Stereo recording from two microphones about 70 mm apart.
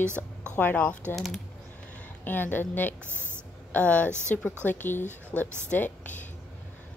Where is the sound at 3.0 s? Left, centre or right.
Right.